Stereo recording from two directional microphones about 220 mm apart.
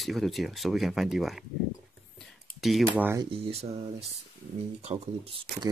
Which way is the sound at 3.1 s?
20° right (ahead or behind).